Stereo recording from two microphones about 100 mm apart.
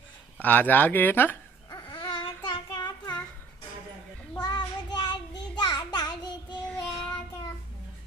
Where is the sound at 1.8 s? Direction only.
55° left (ahead or behind).